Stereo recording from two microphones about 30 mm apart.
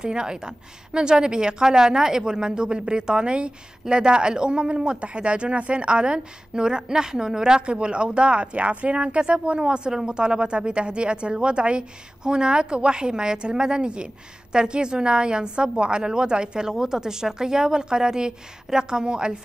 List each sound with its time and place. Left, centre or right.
0.0 s a woman's voice: right
7.6 s speech: right
9.6 s a woman's voice: right